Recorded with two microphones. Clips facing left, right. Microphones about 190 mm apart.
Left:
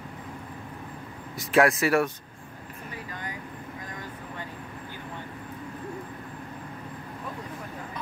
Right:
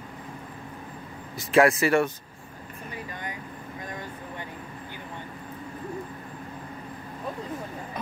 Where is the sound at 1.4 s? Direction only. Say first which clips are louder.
Right 2 dB; centre (ahead or behind).